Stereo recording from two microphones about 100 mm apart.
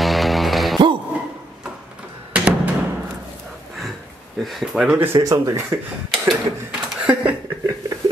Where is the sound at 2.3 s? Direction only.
15° right (ahead or behind).